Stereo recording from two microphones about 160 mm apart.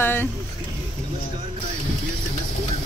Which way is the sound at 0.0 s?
15° left (ahead or behind).